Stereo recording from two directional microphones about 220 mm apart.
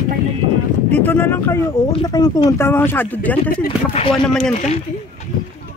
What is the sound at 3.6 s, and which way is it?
Speech, 30° left (ahead or behind).